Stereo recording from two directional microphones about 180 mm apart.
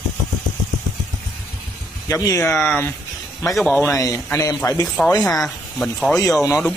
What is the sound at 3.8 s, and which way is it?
Speech, 15° left (ahead or behind).